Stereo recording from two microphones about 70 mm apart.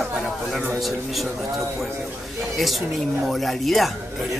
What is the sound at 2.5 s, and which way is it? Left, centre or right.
A man's voice, centre.